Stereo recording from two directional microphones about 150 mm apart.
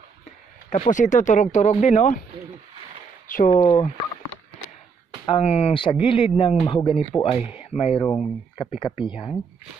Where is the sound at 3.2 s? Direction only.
65° left (ahead or behind).